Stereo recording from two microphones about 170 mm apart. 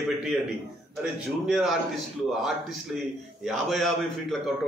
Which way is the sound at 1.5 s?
Centre (ahead or behind).